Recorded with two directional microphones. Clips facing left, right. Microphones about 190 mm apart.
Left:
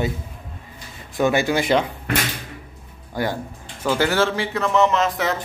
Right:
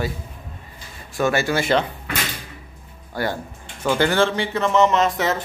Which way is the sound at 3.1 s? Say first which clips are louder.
Left 1 dB; 15° left (ahead or behind).